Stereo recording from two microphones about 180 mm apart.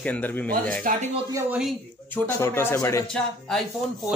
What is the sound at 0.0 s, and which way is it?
Speech, 10° left (ahead or behind).